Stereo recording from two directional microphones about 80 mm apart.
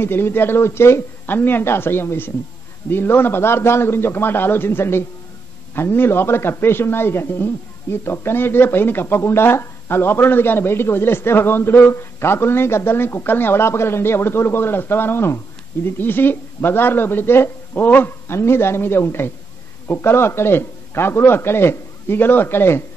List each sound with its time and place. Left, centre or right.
0.0 s a man's voice: left